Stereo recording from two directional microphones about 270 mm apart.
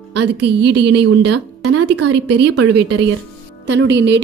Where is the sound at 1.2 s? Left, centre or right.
Right.